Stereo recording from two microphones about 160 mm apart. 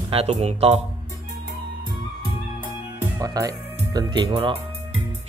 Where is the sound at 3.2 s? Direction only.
20° right (ahead or behind).